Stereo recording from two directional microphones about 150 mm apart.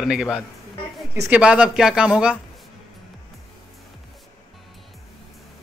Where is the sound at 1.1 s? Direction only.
20° right (ahead or behind).